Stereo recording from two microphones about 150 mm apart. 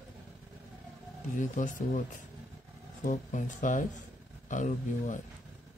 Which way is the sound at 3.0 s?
60° left (ahead or behind).